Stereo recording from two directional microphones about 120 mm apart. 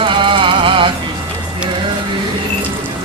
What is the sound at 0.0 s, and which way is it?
Music, 45° right (ahead or behind).